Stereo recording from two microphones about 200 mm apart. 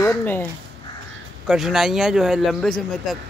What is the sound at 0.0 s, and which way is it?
Speech, 10° left (ahead or behind).